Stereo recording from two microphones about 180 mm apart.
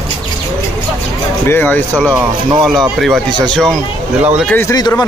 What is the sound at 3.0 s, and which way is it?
Speech, centre (ahead or behind).